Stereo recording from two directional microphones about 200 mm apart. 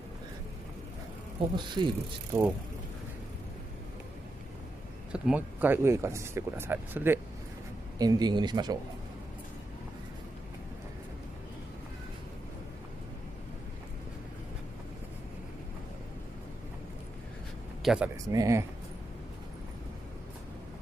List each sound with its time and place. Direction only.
1.5 s speech: 25° right (ahead or behind)
5.1 s speech: 5° right (ahead or behind)
8.0 s speech: 20° right (ahead or behind)
17.8 s speech: 5° right (ahead or behind)
18.3 s speech: 15° right (ahead or behind)